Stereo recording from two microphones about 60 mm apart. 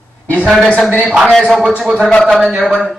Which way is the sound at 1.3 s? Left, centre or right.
Centre.